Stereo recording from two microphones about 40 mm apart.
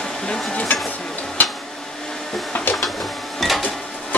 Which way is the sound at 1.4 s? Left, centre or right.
Left.